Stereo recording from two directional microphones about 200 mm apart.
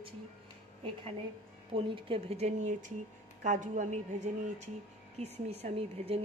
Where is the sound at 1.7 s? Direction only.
25° right (ahead or behind).